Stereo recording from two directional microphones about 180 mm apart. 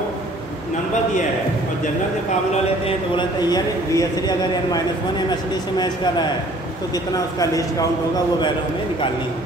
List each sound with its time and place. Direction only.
3.2 s a man's voice: 20° left (ahead or behind)